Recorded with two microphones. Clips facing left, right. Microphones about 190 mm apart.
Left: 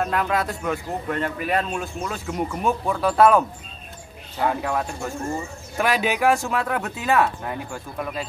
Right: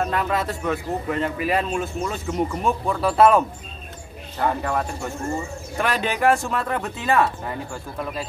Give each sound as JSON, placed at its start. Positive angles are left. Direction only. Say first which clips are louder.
{"t": 0.0, "sound": "speech", "louder": "even", "side_deg": 0}